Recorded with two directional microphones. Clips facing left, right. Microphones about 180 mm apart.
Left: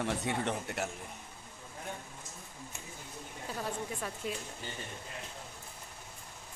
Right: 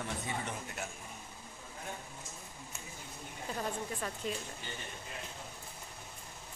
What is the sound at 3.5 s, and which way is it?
Speech, 5° left (ahead or behind).